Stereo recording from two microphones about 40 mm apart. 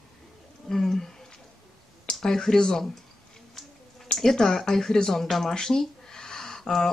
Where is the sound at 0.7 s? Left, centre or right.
Centre.